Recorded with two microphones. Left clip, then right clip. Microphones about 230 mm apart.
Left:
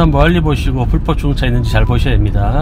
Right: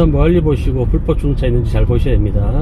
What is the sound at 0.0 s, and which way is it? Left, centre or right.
Speech, left.